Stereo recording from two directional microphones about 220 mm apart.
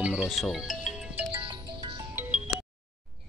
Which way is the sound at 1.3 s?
20° right (ahead or behind).